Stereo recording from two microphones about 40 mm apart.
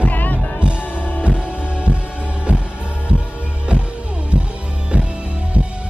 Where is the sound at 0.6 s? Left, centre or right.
Right.